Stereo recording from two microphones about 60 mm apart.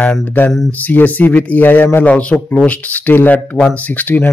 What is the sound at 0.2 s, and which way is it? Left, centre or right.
A man's voice, left.